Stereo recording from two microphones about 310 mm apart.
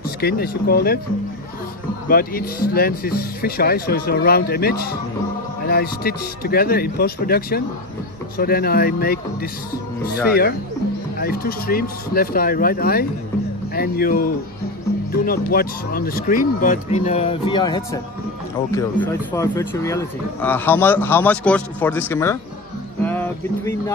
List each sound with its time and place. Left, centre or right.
0.0 s speech: left
2.0 s speech: left
11.1 s speech: left
15.2 s speech: left; by 22.4 s centre
23.0 s music: centre